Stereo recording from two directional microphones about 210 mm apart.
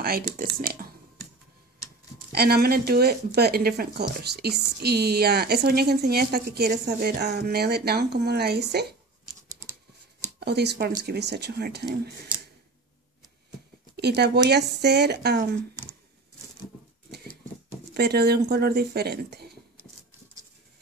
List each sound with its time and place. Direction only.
0.0 s speech: 45° right (ahead or behind)
2.3 s a woman's voice: 50° right (ahead or behind)
10.4 s a woman's voice: 50° right (ahead or behind)
13.9 s a woman's voice: 50° right (ahead or behind)
17.9 s a woman's voice: 50° right (ahead or behind)